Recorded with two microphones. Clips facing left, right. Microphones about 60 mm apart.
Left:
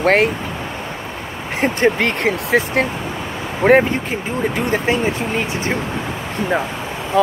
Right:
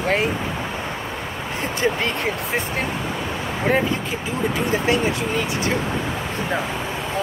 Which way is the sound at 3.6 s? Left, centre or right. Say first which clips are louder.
Left 9 dB; left.